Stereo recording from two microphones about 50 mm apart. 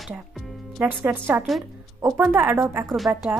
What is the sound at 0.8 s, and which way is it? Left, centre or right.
Speech, right.